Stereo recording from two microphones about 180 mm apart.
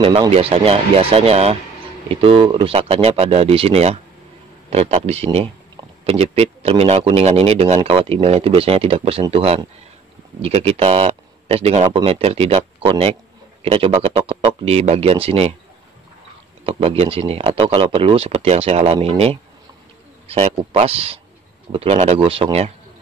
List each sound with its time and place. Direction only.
0.0 s a man's voice: 30° right (ahead or behind)
16.6 s a man's voice: 35° right (ahead or behind)